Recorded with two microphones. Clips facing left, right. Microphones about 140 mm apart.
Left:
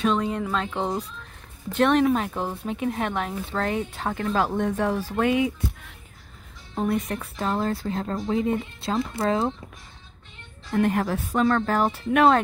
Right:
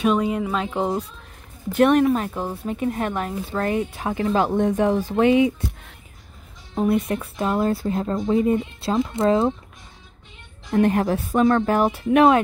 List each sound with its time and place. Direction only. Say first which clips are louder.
0.0 s speech: right 3 dB; 10° right (ahead or behind)
6.7 s speech: right 5 dB; 10° right (ahead or behind)
10.7 s speech: right 4 dB; 20° right (ahead or behind)